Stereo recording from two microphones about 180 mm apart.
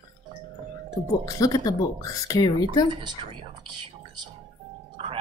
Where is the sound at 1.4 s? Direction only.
20° left (ahead or behind).